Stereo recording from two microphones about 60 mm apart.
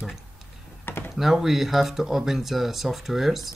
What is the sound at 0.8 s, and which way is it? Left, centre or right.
Computer keyboard, left.